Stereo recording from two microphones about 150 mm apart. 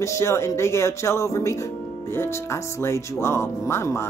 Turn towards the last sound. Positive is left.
turn(degrees=20)  # may be behind; listen again after turning